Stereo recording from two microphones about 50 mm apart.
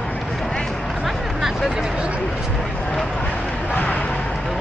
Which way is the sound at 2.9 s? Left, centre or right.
Left.